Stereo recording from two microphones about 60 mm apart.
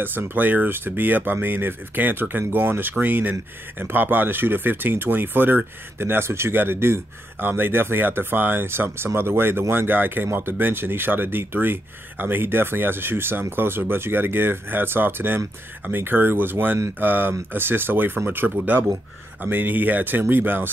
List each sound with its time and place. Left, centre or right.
0.0 s speech: right